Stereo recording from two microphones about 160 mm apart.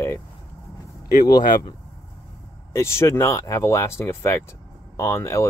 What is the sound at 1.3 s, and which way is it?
Speech, 25° left (ahead or behind).